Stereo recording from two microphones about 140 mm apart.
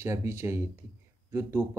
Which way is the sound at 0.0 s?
20° right (ahead or behind).